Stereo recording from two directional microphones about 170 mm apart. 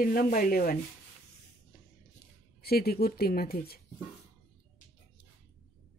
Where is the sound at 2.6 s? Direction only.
65° left (ahead or behind).